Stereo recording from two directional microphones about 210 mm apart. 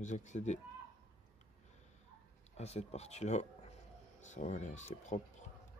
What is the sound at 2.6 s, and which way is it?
Speech, 30° left (ahead or behind).